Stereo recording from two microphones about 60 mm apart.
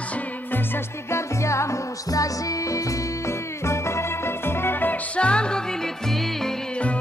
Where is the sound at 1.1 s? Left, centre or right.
Left.